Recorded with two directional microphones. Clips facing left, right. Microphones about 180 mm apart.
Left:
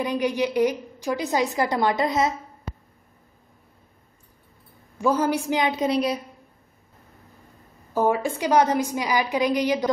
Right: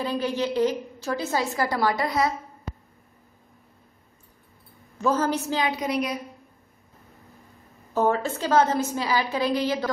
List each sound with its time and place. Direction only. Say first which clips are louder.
0.0 s a woman's voice: left 2 dB; 15° left (ahead or behind)
4.9 s a woman's voice: left 2 dB; 10° left (ahead or behind); by 6.1 s 30° left (ahead or behind)
7.9 s a woman's voice: left 1 dB; 10° left (ahead or behind)